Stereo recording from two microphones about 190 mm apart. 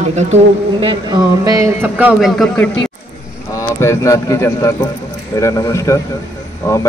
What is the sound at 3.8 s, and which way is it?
A man's voice, 15° left (ahead or behind).